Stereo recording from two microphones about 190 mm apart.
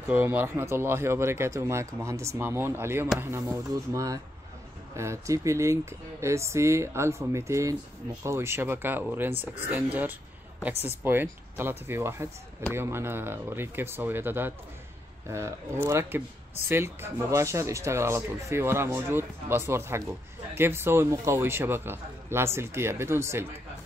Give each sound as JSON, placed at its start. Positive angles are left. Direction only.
{"t": 0.1, "sound": "speech", "side_deg": -10}